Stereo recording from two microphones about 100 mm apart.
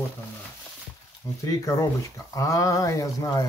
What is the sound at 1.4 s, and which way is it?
Speech, 35° left (ahead or behind).